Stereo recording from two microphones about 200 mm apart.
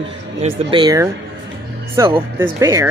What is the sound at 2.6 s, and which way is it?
Speech, 15° right (ahead or behind).